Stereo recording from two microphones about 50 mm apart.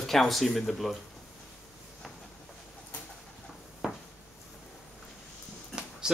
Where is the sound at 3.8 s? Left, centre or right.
Centre.